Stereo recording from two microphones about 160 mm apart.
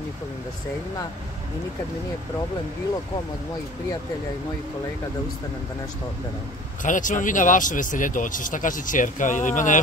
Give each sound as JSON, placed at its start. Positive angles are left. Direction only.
{"t": 6.8, "sound": "speech", "side_deg": 55}